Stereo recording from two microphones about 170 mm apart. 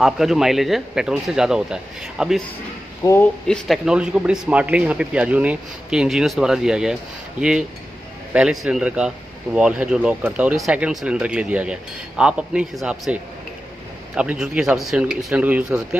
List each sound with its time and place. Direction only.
0.0 s speech: centre (ahead or behind)
3.0 s a man's voice: 15° left (ahead or behind)
3.4 s speech: centre (ahead or behind)